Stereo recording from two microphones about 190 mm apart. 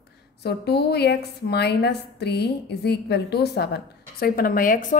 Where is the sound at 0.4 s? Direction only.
60° left (ahead or behind).